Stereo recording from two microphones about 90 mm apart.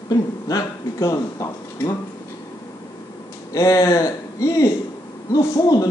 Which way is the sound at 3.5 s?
40° left (ahead or behind).